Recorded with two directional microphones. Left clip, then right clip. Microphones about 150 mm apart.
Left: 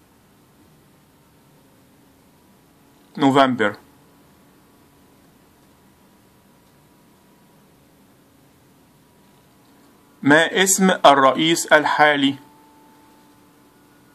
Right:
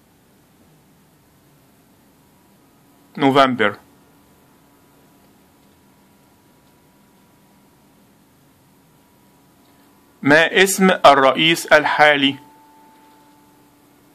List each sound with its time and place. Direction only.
3.1 s a man's voice: centre (ahead or behind)
10.2 s speech: centre (ahead or behind)